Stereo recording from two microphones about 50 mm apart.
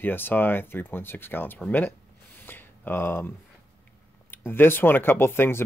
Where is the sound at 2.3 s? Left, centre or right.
Left.